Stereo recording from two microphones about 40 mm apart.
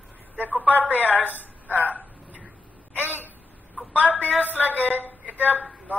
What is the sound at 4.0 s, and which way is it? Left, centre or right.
Speech, right.